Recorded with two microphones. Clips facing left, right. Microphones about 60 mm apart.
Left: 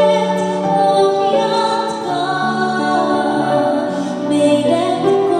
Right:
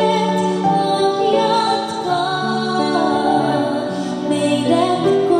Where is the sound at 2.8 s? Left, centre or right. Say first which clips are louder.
Right 1 dB; centre.